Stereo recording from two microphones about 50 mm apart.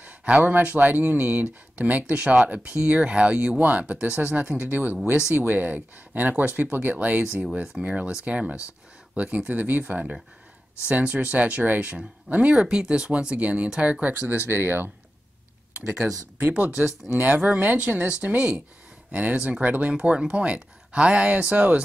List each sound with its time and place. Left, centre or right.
0.0 s speech: right
4.6 s speech: right
12.5 s speech: centre
14.5 s speech: right